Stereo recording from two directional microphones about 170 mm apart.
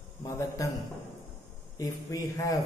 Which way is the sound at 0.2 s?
20° left (ahead or behind).